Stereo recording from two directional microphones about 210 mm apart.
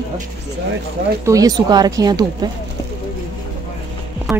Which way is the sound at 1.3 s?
15° right (ahead or behind).